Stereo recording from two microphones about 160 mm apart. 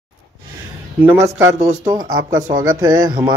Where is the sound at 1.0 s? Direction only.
15° right (ahead or behind).